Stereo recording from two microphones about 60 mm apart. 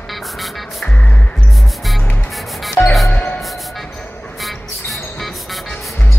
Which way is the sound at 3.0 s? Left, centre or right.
Left.